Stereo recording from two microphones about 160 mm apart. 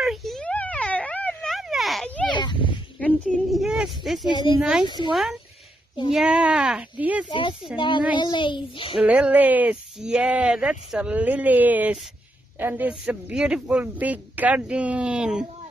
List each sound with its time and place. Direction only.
0.0 s a sound: centre (ahead or behind)
2.3 s a sound: 30° left (ahead or behind)
3.0 s a sound: 5° left (ahead or behind)
4.3 s speech: 30° left (ahead or behind)
4.6 s speech: 5° right (ahead or behind)
4.8 s speech: 30° left (ahead or behind)
5.1 s speech: centre (ahead or behind)
7.2 s a child's voice: 30° left (ahead or behind)
8.9 s speech: 10° right (ahead or behind)